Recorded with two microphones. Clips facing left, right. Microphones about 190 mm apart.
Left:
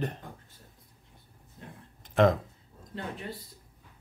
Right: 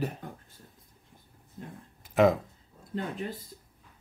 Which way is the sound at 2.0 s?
5° right (ahead or behind).